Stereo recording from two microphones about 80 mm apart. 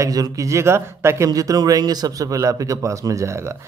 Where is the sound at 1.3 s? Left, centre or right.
Right.